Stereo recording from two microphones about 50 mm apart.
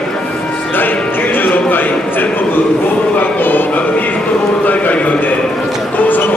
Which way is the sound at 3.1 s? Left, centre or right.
Left.